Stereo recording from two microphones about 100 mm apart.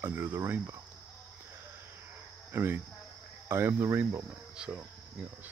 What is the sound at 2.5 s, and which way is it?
Speech, 20° right (ahead or behind).